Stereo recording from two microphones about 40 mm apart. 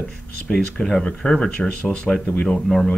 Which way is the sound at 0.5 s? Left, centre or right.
Centre.